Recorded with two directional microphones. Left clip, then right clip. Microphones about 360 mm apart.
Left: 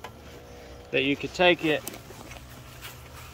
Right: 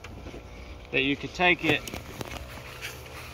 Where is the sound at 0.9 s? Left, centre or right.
Centre.